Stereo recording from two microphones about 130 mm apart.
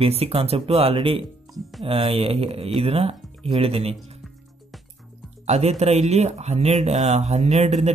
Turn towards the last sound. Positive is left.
turn(degrees=-60)  # may be behind; listen again after turning